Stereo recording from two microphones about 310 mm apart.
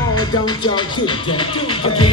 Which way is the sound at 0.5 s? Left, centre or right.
Centre.